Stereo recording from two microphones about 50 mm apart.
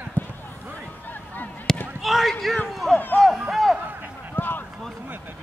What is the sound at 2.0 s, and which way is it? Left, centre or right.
Speech, centre.